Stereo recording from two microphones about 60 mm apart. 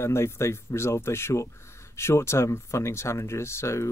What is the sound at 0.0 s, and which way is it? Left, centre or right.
Speech, left.